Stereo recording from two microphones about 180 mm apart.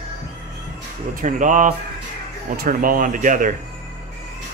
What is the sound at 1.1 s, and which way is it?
Speech, 45° right (ahead or behind).